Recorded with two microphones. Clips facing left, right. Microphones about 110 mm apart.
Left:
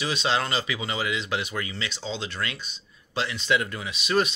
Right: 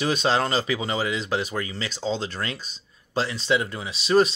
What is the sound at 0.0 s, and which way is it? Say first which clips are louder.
Speech: right 4 dB; 45° right (ahead or behind).